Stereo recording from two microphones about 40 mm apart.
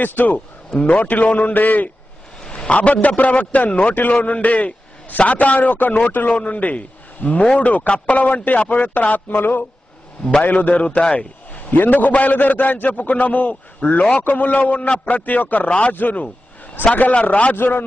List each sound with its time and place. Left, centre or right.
0.0 s a man's voice: left
2.5 s a man's voice: left
11.5 s a man's voice: left
16.8 s a man's voice: left